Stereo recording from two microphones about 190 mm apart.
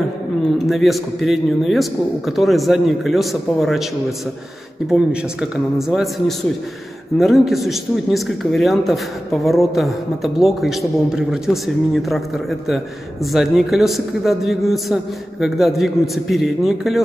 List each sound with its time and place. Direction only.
0.7 s a man's voice: centre (ahead or behind)
4.8 s a man's voice: centre (ahead or behind)